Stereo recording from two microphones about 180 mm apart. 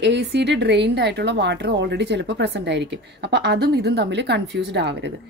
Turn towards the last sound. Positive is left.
turn(degrees=-75)  # may be behind; listen again after turning